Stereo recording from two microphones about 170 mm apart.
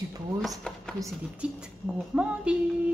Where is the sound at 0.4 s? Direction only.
Centre (ahead or behind).